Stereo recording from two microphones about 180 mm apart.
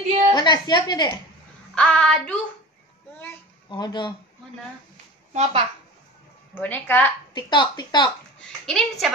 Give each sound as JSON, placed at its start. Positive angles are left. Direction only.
{"t": 0.3, "sound": "a woman's voice", "side_deg": 25}
{"t": 1.8, "sound": "child singing", "side_deg": 5}
{"t": 3.6, "sound": "speech", "side_deg": 25}
{"t": 5.3, "sound": "a child's voice", "side_deg": -35}
{"t": 6.5, "sound": "a woman's voice", "side_deg": 10}
{"t": 7.3, "sound": "speech", "side_deg": 25}
{"t": 8.6, "sound": "child singing", "side_deg": 0}